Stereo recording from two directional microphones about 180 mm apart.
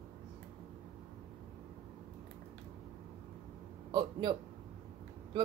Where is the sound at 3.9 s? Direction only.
25° right (ahead or behind).